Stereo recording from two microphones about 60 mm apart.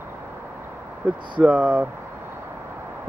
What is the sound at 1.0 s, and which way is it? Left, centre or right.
Speech, right.